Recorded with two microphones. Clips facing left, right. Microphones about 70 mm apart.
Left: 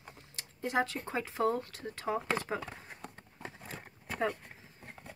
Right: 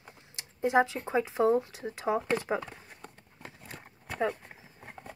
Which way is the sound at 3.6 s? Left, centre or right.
Centre.